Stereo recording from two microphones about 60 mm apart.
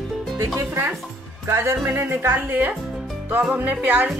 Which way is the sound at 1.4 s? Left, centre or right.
Right.